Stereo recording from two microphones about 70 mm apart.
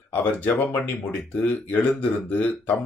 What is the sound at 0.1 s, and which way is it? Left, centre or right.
Speech, left.